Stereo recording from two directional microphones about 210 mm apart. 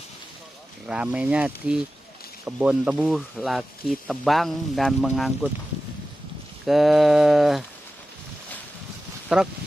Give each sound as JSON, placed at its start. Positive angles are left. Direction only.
{"t": 0.8, "sound": "speech", "side_deg": -5}
{"t": 6.6, "sound": "speech", "side_deg": 0}
{"t": 9.3, "sound": "speech", "side_deg": 0}